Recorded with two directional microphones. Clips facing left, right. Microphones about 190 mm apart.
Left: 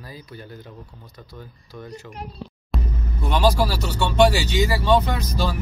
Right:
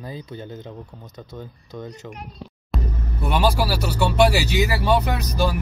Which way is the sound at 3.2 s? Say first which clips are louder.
Left 1 dB; 10° right (ahead or behind).